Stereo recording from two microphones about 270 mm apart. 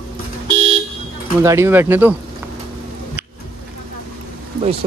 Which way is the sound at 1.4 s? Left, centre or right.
Centre.